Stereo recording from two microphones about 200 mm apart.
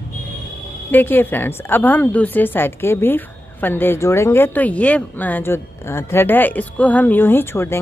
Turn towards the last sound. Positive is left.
turn(degrees=10)  # may be behind; listen again after turning